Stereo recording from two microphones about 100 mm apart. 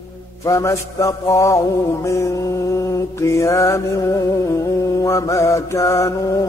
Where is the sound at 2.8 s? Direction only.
30° left (ahead or behind).